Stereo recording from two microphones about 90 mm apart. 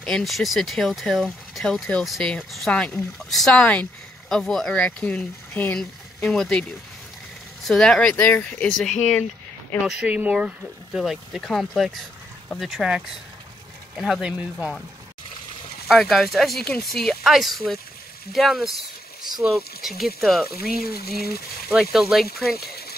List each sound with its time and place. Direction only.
0.0 s speech: 5° left (ahead or behind)
5.5 s speech: 20° left (ahead or behind)
5.8 s speech: 5° left (ahead or behind)
7.6 s speech: 5° left (ahead or behind)
9.8 s speech: 15° right (ahead or behind)
15.9 s speech: centre (ahead or behind)